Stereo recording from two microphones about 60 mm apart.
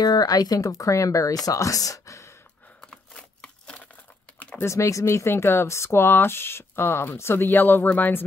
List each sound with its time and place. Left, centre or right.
0.0 s speech: left
2.9 s a sound: centre
4.6 s speech: left